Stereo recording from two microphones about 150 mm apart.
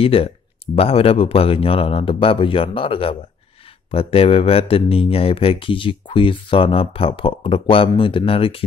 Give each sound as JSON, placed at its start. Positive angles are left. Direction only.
{"t": 0.0, "sound": "speech", "side_deg": 40}